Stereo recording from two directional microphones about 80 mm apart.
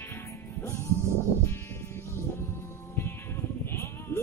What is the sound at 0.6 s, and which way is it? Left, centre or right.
Music, left.